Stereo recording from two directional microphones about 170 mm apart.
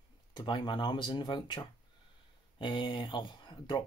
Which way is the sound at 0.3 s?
25° left (ahead or behind).